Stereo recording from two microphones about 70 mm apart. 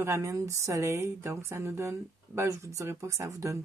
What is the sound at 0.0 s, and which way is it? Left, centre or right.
Speech, right.